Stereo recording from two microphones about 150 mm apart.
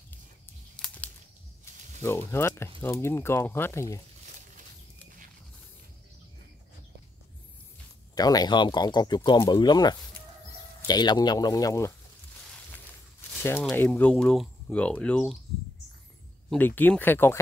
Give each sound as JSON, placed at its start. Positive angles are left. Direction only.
{"t": 0.7, "sound": "a sound", "side_deg": 5}
{"t": 2.0, "sound": "speech", "side_deg": 15}
{"t": 8.1, "sound": "speech", "side_deg": 25}
{"t": 13.4, "sound": "speech", "side_deg": 15}
{"t": 16.4, "sound": "speech", "side_deg": 10}